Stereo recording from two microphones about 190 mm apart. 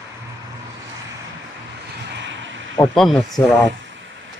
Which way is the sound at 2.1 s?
75° right (ahead or behind).